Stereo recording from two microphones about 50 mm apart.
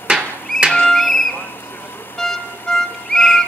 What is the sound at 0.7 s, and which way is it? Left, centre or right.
Music, centre.